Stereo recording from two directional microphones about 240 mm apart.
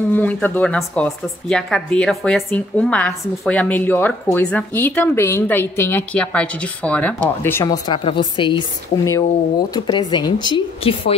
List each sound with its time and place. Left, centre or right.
0.1 s speech: centre; by 11.1 s left